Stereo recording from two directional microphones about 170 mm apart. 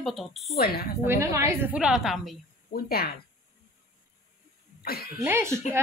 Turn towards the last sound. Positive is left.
turn(degrees=-15)  # may be behind; listen again after turning